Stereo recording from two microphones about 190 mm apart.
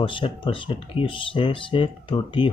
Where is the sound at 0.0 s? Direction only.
25° left (ahead or behind).